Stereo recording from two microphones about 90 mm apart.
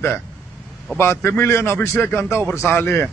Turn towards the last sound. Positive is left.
turn(degrees=30)  # may be behind; listen again after turning